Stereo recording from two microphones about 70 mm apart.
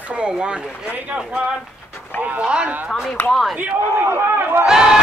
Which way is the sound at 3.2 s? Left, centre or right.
Centre.